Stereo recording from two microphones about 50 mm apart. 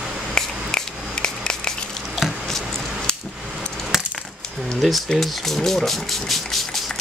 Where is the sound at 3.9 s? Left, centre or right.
Centre.